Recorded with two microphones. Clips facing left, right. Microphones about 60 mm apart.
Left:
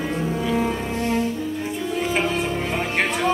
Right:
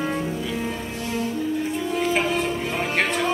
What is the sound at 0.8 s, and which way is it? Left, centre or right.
Cello, left.